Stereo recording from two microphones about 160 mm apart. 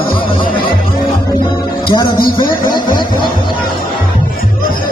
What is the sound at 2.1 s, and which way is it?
Speech, 30° left (ahead or behind).